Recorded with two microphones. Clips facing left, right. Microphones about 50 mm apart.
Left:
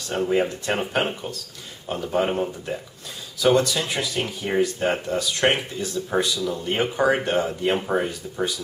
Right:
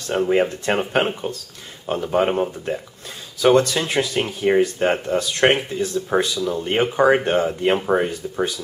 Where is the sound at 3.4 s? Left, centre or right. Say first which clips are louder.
Right 3 dB; right.